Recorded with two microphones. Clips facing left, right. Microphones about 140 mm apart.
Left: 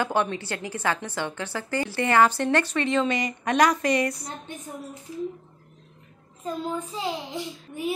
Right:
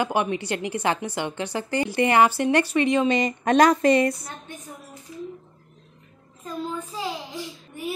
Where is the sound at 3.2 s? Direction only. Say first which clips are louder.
Right 4 dB; 30° right (ahead or behind).